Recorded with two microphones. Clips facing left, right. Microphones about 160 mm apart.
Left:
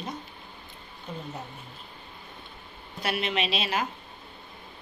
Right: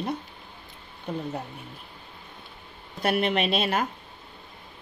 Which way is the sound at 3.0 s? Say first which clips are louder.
Right 5 dB; 50° right (ahead or behind).